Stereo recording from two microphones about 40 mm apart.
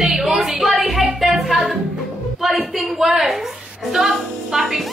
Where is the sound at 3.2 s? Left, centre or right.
Centre.